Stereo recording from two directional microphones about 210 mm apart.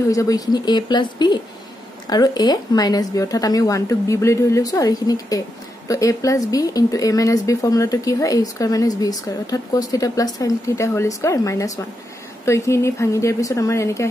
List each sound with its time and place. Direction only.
0.1 s speech: 15° left (ahead or behind)